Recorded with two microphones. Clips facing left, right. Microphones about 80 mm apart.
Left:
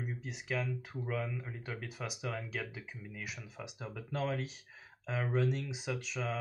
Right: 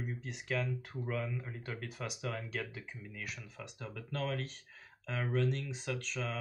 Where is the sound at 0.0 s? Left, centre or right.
Centre.